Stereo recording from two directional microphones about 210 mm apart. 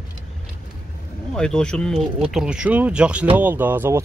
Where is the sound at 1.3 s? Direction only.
5° left (ahead or behind).